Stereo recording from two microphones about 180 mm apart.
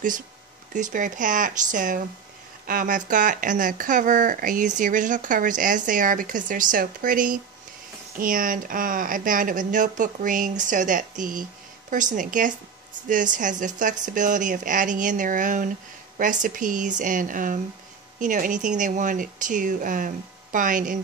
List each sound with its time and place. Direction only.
0.7 s speech: 45° right (ahead or behind)